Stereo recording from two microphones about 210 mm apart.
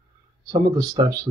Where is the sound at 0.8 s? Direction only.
15° right (ahead or behind).